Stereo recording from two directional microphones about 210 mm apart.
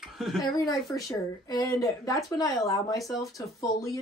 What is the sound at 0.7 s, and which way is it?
Speech, 15° left (ahead or behind).